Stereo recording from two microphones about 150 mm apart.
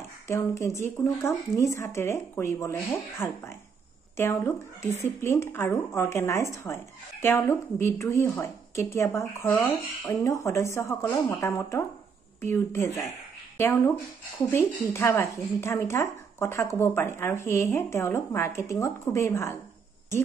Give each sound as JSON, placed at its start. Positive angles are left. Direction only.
{"t": 0.3, "sound": "speech", "side_deg": 20}